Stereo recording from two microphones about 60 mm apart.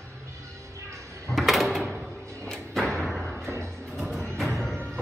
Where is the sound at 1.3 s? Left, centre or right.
Centre.